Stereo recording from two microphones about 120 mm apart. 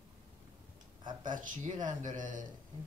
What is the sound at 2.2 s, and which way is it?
Music, 90° right.